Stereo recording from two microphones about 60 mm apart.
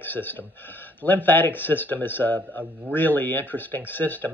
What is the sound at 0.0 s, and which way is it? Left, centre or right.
A man's voice, left.